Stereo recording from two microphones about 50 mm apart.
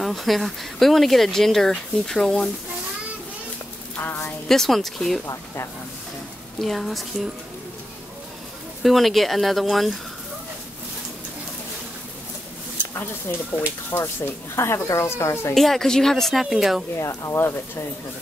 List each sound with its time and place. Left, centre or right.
0.0 s speech: centre
4.5 s speech: centre
6.6 s speech: centre
8.8 s speech: centre
13.3 s speech: left
13.9 s speech: left
15.5 s speech: centre
16.4 s speech: centre
17.0 s speech: left